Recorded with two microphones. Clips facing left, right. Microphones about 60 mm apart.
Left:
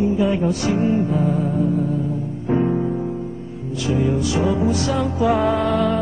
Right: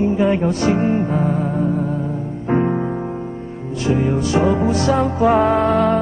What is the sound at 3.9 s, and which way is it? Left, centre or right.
Music, right.